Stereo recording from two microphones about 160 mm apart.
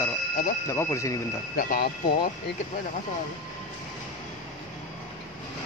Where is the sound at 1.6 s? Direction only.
55° left (ahead or behind).